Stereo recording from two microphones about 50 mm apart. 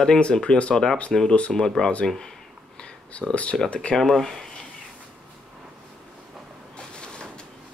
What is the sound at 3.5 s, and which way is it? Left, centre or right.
Speech, centre.